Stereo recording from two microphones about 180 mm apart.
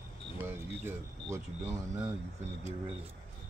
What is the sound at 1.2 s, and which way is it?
Speech, 15° right (ahead or behind).